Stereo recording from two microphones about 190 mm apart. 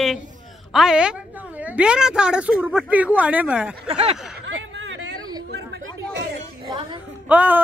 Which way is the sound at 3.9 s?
30° right (ahead or behind).